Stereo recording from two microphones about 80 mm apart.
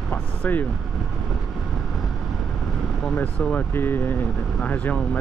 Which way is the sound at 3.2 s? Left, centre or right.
Centre.